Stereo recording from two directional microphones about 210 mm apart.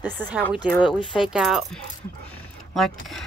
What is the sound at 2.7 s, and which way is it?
Speech, centre (ahead or behind).